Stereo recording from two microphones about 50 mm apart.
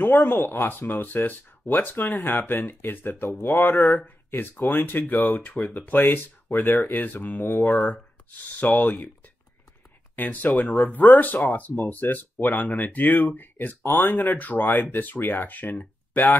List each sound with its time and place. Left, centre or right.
0.2 s speech: left
3.1 s speech: left
3.4 s speech: left
10.1 s speech: left